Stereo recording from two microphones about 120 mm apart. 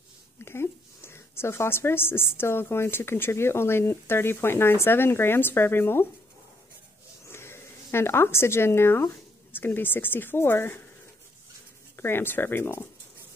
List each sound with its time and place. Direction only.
0.5 s speech: 20° left (ahead or behind)
7.2 s speech: 20° left (ahead or behind)
12.0 s speech: 20° left (ahead or behind)